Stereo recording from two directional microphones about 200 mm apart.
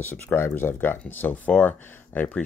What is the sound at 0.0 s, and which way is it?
Speech, 10° left (ahead or behind).